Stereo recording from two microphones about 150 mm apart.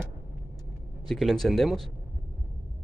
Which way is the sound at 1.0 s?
Centre (ahead or behind).